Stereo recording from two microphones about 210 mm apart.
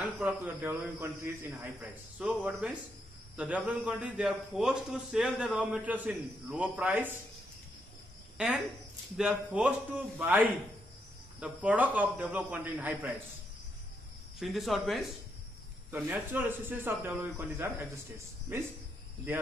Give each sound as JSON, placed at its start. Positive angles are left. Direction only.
{"t": 0.0, "sound": "a man's voice", "side_deg": -10}
{"t": 8.4, "sound": "a man's voice", "side_deg": -5}
{"t": 14.4, "sound": "a man's voice", "side_deg": 0}